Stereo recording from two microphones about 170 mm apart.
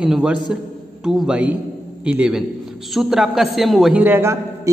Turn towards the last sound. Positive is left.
turn(degrees=-15)  # may be behind; listen again after turning